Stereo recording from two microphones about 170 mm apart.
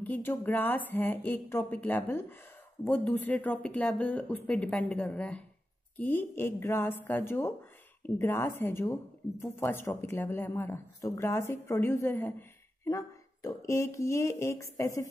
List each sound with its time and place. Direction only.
0.0 s speech: 10° left (ahead or behind)